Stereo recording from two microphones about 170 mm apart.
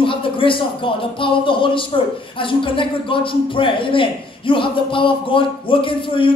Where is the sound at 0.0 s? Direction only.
30° left (ahead or behind).